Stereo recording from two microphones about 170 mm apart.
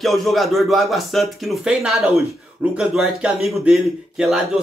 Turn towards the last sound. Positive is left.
turn(degrees=-5)  # may be behind; listen again after turning